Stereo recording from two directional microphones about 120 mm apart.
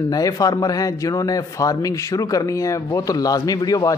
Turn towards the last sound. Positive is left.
turn(degrees=30)  # may be behind; listen again after turning